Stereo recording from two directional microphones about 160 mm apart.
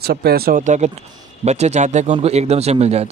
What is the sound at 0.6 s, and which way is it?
Speech, 50° right (ahead or behind).